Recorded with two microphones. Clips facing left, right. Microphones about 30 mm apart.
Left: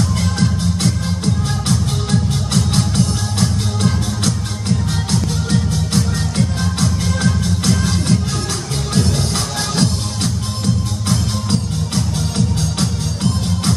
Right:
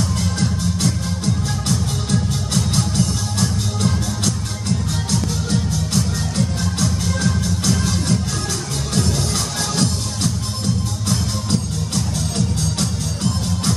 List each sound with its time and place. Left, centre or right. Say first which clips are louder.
0.2 s music: left 3 dB; left
5.9 s music: left 3 dB; left